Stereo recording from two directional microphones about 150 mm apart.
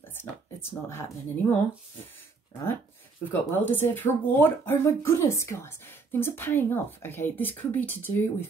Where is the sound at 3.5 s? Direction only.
15° left (ahead or behind).